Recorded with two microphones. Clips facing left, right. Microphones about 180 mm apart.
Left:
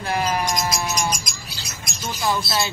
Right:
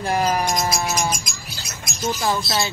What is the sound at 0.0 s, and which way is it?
Music, 40° right (ahead or behind).